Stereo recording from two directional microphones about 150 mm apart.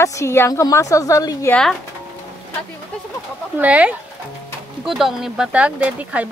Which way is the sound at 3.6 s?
10° right (ahead or behind).